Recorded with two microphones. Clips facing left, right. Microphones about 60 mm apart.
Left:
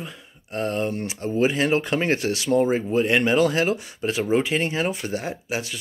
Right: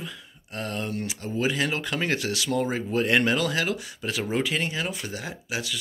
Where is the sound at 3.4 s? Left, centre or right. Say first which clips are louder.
Left 6 dB; left.